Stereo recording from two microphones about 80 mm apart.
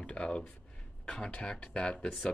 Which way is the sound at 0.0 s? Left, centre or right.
Centre.